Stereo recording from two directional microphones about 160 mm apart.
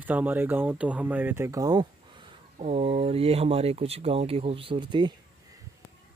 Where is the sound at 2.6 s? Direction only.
35° right (ahead or behind).